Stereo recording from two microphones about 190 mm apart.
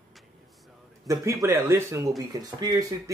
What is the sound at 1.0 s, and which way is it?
Speech, 15° right (ahead or behind).